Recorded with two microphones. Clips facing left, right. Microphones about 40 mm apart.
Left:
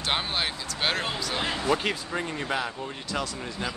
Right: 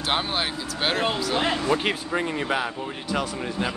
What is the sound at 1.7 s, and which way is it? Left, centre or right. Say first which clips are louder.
Speech: right 3 dB; centre.